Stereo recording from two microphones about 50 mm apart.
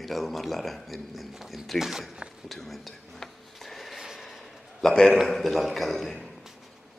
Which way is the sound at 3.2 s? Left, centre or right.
Centre.